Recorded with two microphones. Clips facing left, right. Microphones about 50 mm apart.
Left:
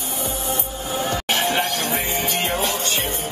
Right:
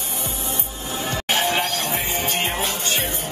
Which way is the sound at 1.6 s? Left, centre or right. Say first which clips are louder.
Left 1 dB; left.